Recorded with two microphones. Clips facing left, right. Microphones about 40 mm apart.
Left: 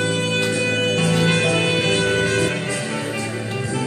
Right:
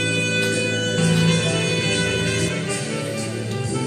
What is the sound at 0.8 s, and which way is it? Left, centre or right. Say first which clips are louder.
Music: left 2 dB; left.